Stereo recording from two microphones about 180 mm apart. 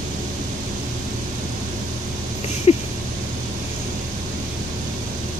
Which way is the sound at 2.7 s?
35° left (ahead or behind).